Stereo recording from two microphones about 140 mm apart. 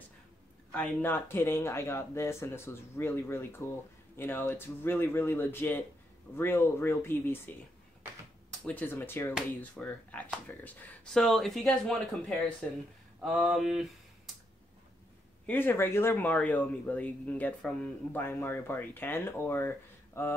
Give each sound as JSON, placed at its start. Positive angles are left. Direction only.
{"t": 0.7, "sound": "speech", "side_deg": 10}
{"t": 8.6, "sound": "speech", "side_deg": 15}
{"t": 11.2, "sound": "speech", "side_deg": 0}
{"t": 15.4, "sound": "speech", "side_deg": 15}